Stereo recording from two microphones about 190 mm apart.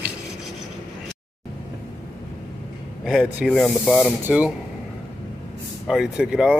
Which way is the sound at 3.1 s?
Centre (ahead or behind).